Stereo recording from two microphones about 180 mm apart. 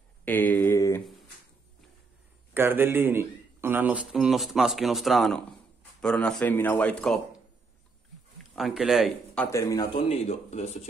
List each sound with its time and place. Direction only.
0.2 s a sound: 10° left (ahead or behind)
2.5 s a man's voice: 10° right (ahead or behind); by 7.2 s 5° left (ahead or behind)
8.5 s a man's voice: centre (ahead or behind)
9.5 s speech: 15° left (ahead or behind)
10.0 s speech: 35° left (ahead or behind)